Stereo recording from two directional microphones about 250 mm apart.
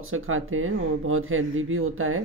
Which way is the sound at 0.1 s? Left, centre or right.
Right.